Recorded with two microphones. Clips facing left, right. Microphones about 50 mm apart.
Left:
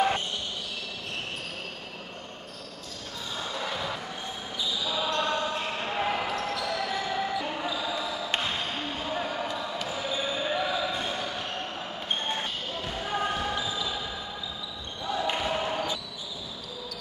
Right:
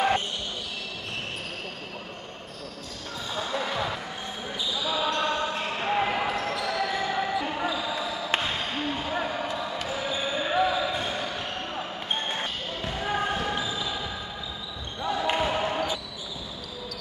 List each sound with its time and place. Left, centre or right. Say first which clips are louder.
3.3 s basketball bounce: right 4 dB; centre
15.2 s basketball bounce: right 5 dB; right
15.5 s basketball bounce: right 2 dB; centre